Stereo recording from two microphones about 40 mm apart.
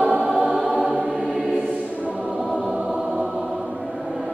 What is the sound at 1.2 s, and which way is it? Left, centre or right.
Choir, centre.